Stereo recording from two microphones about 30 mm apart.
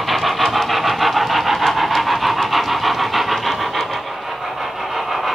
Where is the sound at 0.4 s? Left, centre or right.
Centre.